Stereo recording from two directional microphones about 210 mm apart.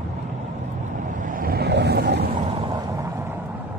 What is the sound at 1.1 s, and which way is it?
Vehicle, 40° right (ahead or behind).